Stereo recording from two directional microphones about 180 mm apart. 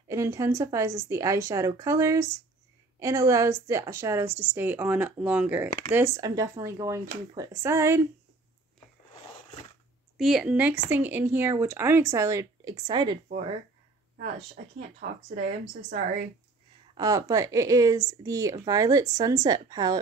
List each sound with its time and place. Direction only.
0.1 s speech: 15° right (ahead or behind)
10.1 s speech: centre (ahead or behind); by 13.2 s 25° right (ahead or behind)
15.6 s speech: 40° right (ahead or behind)
16.9 s speech: 20° right (ahead or behind)